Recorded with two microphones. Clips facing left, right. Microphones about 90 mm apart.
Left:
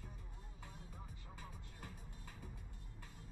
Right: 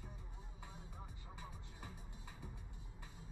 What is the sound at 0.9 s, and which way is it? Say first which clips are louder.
Music: right 1 dB; 5° right (ahead or behind).